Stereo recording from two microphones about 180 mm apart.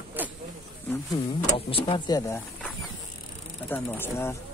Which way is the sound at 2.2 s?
15° left (ahead or behind).